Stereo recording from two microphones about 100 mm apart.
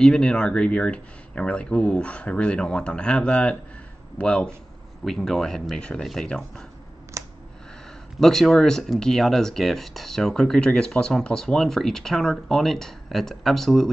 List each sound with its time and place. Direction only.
0.0 s speech: 10° left (ahead or behind)
7.2 s a sound: 30° right (ahead or behind)
8.2 s speech: 5° left (ahead or behind)